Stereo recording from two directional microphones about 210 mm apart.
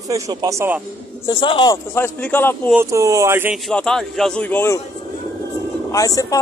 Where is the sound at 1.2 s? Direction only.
25° left (ahead or behind).